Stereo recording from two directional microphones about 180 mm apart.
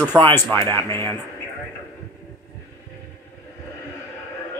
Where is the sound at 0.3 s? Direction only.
10° left (ahead or behind).